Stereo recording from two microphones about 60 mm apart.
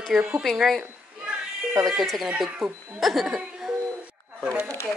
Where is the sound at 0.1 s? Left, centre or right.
Centre.